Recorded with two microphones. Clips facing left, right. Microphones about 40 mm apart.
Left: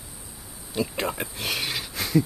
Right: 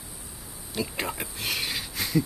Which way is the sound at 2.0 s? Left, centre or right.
Centre.